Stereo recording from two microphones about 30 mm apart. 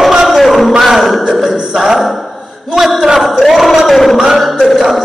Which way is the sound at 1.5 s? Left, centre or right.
Centre.